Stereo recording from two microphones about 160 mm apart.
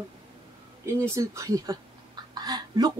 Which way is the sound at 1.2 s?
20° right (ahead or behind).